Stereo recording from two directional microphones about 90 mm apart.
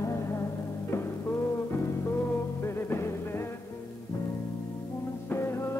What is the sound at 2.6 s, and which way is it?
Music, 30° left (ahead or behind).